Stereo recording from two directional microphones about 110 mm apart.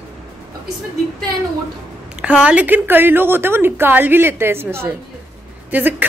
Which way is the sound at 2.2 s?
10° right (ahead or behind).